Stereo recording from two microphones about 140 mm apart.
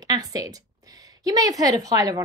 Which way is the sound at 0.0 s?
25° right (ahead or behind).